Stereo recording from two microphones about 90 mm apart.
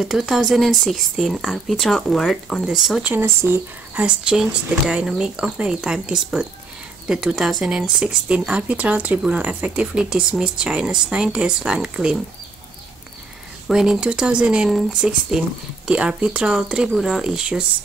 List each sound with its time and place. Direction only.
0.0 s speech: 5° right (ahead or behind)
3.1 s speech: 25° right (ahead or behind)
4.0 s speech: 10° right (ahead or behind)
13.7 s speech: 5° right (ahead or behind)